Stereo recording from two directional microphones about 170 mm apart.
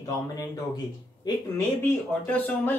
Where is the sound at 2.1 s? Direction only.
10° left (ahead or behind).